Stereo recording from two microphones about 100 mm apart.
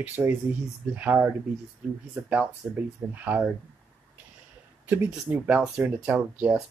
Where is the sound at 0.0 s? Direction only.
20° right (ahead or behind).